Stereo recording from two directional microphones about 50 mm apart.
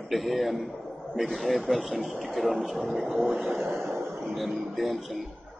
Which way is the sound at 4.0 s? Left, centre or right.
Right.